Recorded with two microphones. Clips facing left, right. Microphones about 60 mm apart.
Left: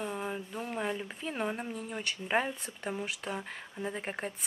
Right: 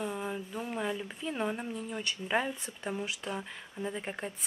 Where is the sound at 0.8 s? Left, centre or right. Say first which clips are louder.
Left 1 dB; centre.